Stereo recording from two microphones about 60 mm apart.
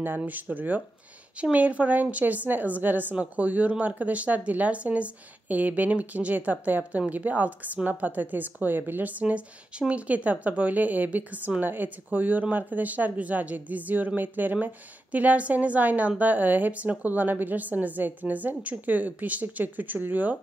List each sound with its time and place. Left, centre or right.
0.2 s speech: right